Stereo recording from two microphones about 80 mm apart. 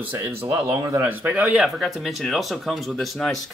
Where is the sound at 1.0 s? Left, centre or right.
Centre.